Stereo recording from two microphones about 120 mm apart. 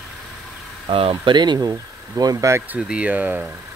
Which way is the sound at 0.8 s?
45° right (ahead or behind).